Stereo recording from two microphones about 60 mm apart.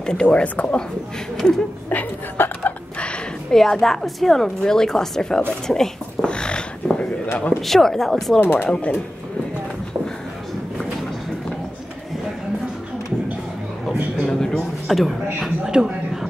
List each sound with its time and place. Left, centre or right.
0.0 s speech: centre
1.3 s speech: centre
1.9 s a woman's voice: left
3.5 s a woman's voice: centre
5.7 s a sound: centre
7.6 s speech: centre
8.4 s speech: left
8.6 s a woman's voice: centre
14.2 s a sound: centre
15.3 s speech: centre
15.7 s a sound: centre